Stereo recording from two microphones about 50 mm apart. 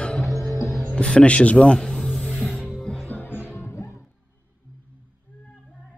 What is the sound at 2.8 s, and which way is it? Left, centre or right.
Music, centre.